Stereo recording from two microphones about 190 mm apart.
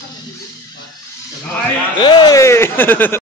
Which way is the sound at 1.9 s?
20° left (ahead or behind).